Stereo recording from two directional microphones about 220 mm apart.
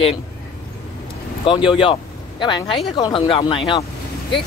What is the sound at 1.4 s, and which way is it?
Speech, 20° left (ahead or behind).